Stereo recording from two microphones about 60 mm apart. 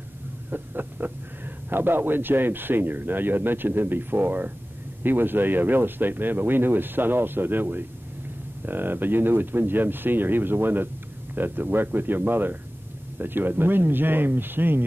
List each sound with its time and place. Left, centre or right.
0.5 s speech: right